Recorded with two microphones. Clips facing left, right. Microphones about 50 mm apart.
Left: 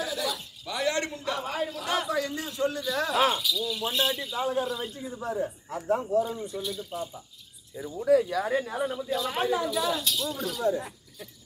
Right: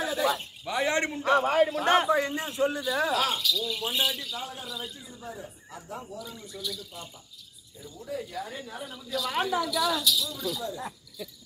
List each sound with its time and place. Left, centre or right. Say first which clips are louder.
0.0 s a man's voice: right 4 dB; right
2.0 s speech: right 3 dB; right; by 3.2 s centre
3.3 s speech: even; centre
3.6 s speech: left 1 dB; centre
4.2 s a man's voice: left 7 dB; left
4.6 s speech: left 6 dB; left
5.2 s speech: left 10 dB; left
5.9 s speech: left 15 dB; left
8.1 s speech: left 12 dB; left
8.8 s speech: left 4 dB; left
9.3 s speech: right 1 dB; centre; by 11.2 s left